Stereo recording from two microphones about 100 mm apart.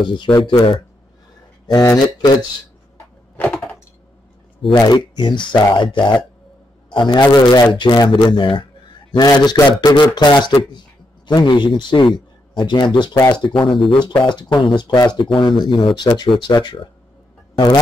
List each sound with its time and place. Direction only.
0.0 s a man's voice: 50° left (ahead or behind)
1.7 s speech: 40° left (ahead or behind)
4.8 s a man's voice: 45° left (ahead or behind)
7.3 s speech: 40° left (ahead or behind)
7.7 s a man's voice: 50° left (ahead or behind)
13.6 s a man's voice: 55° left (ahead or behind)
15.2 s a man's voice: 60° left (ahead or behind)